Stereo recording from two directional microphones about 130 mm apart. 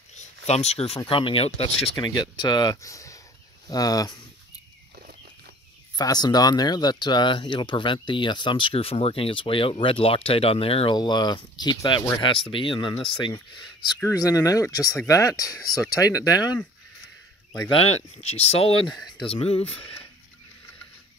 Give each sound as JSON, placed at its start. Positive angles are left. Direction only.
{"t": 0.1, "sound": "speech", "side_deg": 55}
{"t": 5.9, "sound": "speech", "side_deg": 30}
{"t": 11.0, "sound": "speech", "side_deg": 35}
{"t": 14.1, "sound": "speech", "side_deg": 25}
{"t": 17.8, "sound": "speech", "side_deg": 55}
{"t": 18.9, "sound": "speech", "side_deg": 5}
{"t": 19.3, "sound": "speech", "side_deg": 50}